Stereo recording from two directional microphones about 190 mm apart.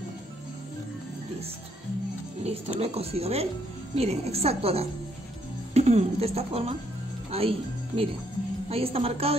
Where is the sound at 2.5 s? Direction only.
35° right (ahead or behind).